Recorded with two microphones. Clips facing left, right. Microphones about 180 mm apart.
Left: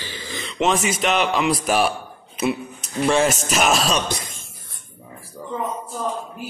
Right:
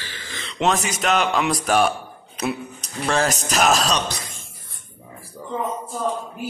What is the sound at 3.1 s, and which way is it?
Speech, 5° left (ahead or behind).